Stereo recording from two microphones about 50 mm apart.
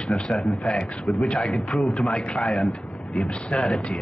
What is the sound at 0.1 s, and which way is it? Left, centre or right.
A man's voice, centre.